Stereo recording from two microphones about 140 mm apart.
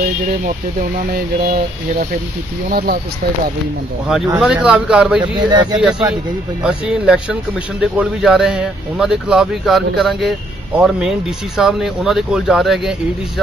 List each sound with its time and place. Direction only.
0.7 s speech: 90° right
4.4 s speech: 5° right (ahead or behind)
5.2 s speech: 30° right (ahead or behind)
5.8 s speech: 5° right (ahead or behind)